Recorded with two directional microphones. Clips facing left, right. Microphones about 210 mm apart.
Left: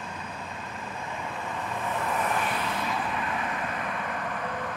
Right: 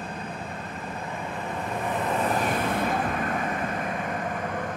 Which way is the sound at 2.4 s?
50° right (ahead or behind).